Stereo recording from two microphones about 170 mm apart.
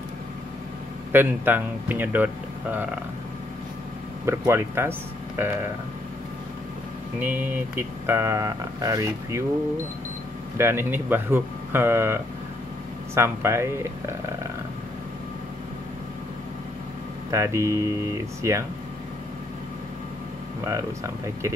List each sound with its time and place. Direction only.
1.1 s speech: 10° right (ahead or behind)
4.3 s speech: 15° right (ahead or behind)
7.2 s speech: 10° right (ahead or behind)
10.6 s speech: 15° right (ahead or behind)
17.3 s speech: 15° right (ahead or behind)
20.6 s speech: 20° right (ahead or behind)